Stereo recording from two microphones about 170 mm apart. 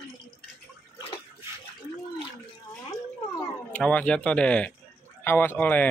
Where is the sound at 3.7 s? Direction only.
10° left (ahead or behind).